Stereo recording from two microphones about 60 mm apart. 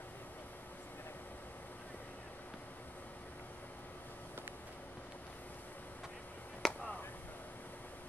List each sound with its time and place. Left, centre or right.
6.6 s chop: centre